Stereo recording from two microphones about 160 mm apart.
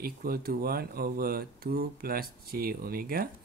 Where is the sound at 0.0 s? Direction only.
70° right (ahead or behind).